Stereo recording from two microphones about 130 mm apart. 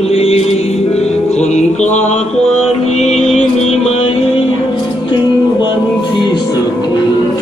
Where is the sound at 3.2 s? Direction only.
55° left (ahead or behind).